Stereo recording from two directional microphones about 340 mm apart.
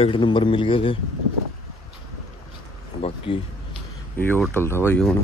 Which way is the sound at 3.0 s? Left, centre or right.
Centre.